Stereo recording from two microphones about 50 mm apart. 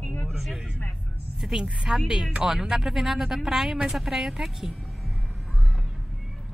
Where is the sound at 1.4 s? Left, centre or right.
Centre.